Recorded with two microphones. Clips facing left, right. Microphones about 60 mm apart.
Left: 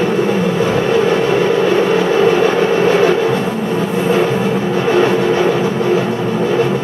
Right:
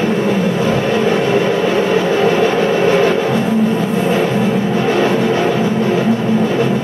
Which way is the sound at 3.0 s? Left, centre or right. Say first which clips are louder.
Left 1 dB; centre.